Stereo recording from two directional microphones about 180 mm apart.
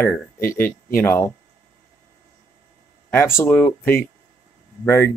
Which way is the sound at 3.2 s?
10° left (ahead or behind).